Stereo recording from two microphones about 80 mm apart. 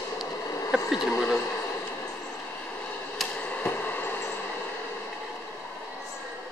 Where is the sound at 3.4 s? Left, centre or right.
Centre.